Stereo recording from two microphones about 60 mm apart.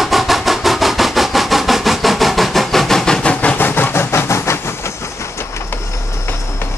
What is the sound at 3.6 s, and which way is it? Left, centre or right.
Vehicle, left.